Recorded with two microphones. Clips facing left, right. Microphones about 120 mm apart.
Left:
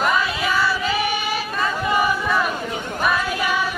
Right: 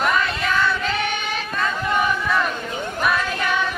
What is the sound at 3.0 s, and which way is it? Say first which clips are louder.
Female singing: left 1 dB; 5° left (ahead or behind).